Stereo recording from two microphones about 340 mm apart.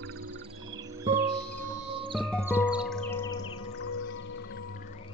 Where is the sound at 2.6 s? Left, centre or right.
Centre.